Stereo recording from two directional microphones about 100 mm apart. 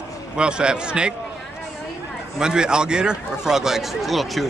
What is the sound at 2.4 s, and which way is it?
Speech, 10° right (ahead or behind).